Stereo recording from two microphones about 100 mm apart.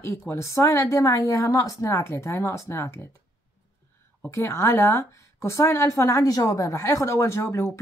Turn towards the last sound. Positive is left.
turn(degrees=25)  # may be behind; listen again after turning